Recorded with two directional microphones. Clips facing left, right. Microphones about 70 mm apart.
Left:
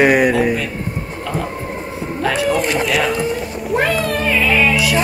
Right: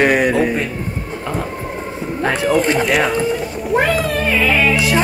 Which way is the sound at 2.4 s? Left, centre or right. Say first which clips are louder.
Right 5 dB; right.